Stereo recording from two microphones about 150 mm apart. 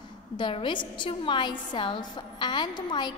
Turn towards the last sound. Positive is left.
turn(degrees=30)  # may be behind; listen again after turning